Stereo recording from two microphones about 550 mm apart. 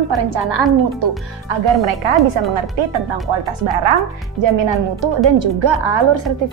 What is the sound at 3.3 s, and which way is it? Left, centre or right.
Speech, right.